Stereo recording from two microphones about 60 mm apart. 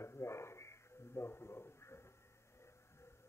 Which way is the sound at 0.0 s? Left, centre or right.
Left.